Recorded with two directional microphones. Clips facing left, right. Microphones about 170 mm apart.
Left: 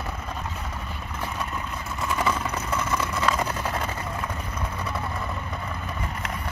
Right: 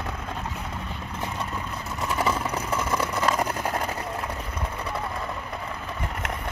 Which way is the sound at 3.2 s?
40° right (ahead or behind).